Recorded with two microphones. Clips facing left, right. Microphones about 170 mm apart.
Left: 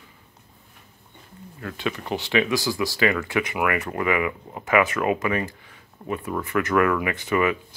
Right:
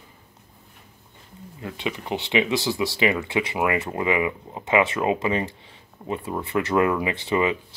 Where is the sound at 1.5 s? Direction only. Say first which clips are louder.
Left 1 dB; 20° right (ahead or behind).